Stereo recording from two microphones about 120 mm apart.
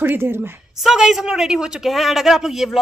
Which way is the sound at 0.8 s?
5° right (ahead or behind).